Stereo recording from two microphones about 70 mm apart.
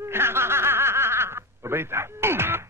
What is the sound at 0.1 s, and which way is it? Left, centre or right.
Snicker, right.